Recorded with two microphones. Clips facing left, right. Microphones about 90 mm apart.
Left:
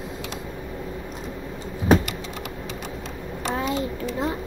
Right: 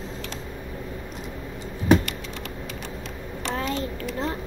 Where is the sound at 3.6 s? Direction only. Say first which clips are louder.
Left 2 dB; 10° left (ahead or behind).